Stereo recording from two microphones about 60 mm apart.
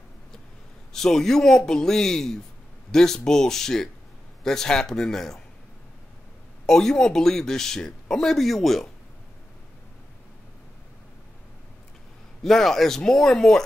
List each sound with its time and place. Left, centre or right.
0.9 s speech: centre
6.6 s speech: centre
12.4 s speech: centre